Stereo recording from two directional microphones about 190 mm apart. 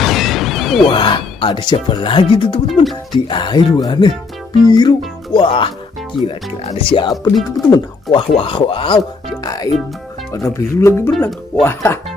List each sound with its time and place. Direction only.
0.0 s a sound: centre (ahead or behind)
0.8 s speech: 25° left (ahead or behind)
2.7 s speech: centre (ahead or behind)
3.1 s speech: 25° left (ahead or behind)
7.6 s speech: centre (ahead or behind)
8.3 s speech: 30° left (ahead or behind)
11.1 s speech: centre (ahead or behind)
11.6 s speech: 15° left (ahead or behind)